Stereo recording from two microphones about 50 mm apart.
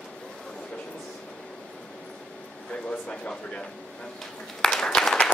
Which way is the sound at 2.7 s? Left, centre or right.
Left.